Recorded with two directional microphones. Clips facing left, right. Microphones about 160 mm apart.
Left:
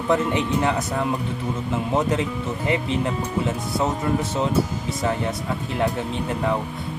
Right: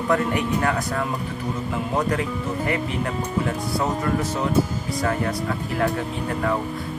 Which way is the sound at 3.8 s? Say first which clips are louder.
Left 1 dB; 25° left (ahead or behind).